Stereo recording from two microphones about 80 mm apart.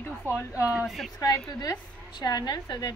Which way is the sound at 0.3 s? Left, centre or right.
Left.